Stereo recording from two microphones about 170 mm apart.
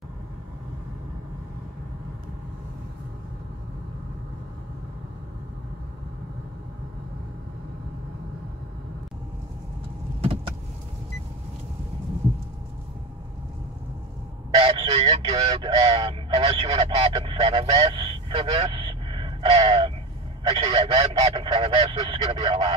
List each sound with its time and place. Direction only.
10.2 s vehicle: 35° right (ahead or behind)
14.6 s speech: 35° right (ahead or behind)